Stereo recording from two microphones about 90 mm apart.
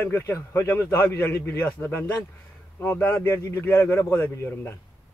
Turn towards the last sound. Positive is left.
turn(degrees=20)  # may be behind; listen again after turning